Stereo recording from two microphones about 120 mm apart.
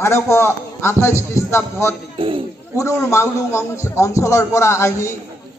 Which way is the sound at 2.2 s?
45° right (ahead or behind).